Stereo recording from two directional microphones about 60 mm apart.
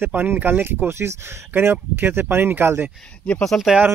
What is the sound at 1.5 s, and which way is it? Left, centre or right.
Speech, right.